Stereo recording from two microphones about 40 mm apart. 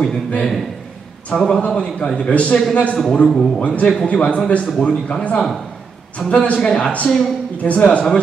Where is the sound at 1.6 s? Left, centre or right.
Left.